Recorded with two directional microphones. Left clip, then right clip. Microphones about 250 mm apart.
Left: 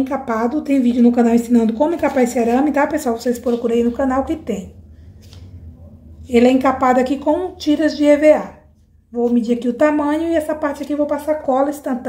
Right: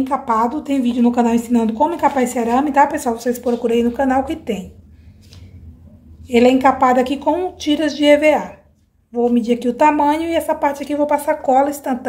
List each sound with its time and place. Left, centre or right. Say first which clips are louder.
0.0 s a woman's voice: right 3 dB; centre
6.2 s a woman's voice: right 1 dB; centre